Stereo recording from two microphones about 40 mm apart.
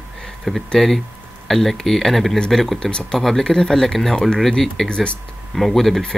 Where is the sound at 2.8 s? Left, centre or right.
Left.